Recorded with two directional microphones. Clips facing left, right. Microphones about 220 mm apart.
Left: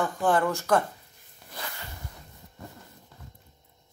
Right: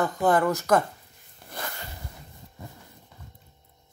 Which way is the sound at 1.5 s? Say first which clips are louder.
Right 3 dB; 45° right (ahead or behind).